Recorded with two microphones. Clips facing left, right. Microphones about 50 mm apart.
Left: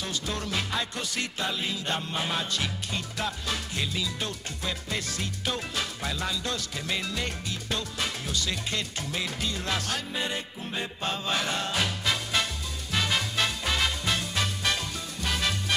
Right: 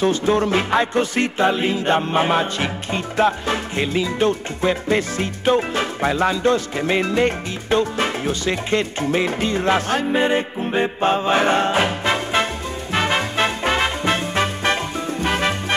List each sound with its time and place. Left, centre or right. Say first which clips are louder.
0.0 s music: right 15 dB; right